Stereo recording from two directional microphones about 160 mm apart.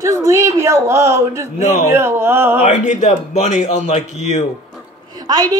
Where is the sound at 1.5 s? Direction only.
50° left (ahead or behind).